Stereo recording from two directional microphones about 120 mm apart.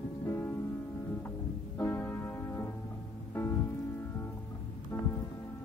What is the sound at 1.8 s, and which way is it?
Music, 20° left (ahead or behind).